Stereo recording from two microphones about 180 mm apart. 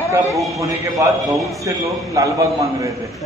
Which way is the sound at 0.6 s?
20° right (ahead or behind).